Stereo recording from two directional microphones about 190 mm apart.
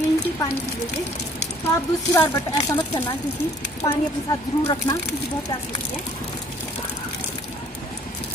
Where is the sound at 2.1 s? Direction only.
15° left (ahead or behind).